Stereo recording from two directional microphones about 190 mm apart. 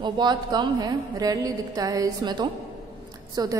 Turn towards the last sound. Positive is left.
turn(degrees=-20)  # may be behind; listen again after turning